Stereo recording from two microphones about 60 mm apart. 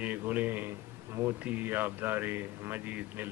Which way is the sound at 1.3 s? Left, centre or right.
Right.